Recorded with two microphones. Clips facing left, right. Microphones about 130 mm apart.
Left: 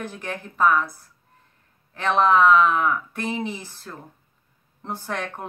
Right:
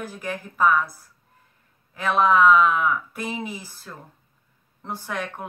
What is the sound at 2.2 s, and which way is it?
A woman's voice, 5° right (ahead or behind).